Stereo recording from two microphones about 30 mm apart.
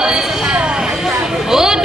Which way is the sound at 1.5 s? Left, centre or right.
Centre.